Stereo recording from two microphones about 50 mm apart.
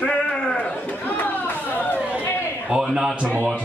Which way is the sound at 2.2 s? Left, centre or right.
Left.